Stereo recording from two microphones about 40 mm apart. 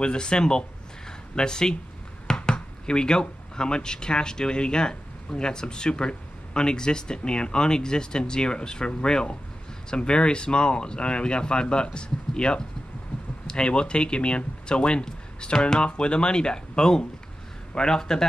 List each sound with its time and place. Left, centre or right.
0.0 s speech: left